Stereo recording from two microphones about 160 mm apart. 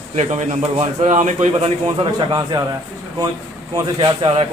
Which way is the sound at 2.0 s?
30° right (ahead or behind).